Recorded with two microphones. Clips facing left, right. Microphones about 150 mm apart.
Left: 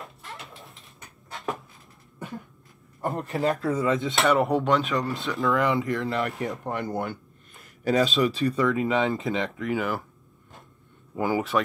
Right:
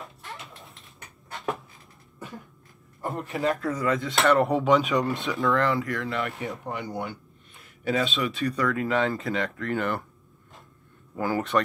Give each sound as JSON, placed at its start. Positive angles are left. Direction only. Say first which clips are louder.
{"t": 0.0, "sound": "a sound", "louder": "even", "side_deg": 0}
{"t": 2.1, "sound": "cough", "louder": "left 3 dB", "side_deg": 0}
{"t": 3.0, "sound": "speech", "louder": "left 2 dB", "side_deg": 0}
{"t": 3.7, "sound": "speech", "louder": "left 2 dB", "side_deg": 25}
{"t": 4.1, "sound": "speech", "louder": "right 2 dB", "side_deg": 0}
{"t": 5.6, "sound": "speech", "louder": "left 1 dB", "side_deg": 20}
{"t": 5.9, "sound": "a man's voice", "louder": "left 3 dB", "side_deg": 0}
{"t": 8.2, "sound": "speech", "louder": "left 5 dB", "side_deg": 30}
{"t": 8.7, "sound": "speech", "louder": "left 1 dB", "side_deg": 20}
{"t": 9.7, "sound": "speech", "louder": "left 1 dB", "side_deg": 5}
{"t": 11.3, "sound": "speech", "louder": "right 1 dB", "side_deg": 5}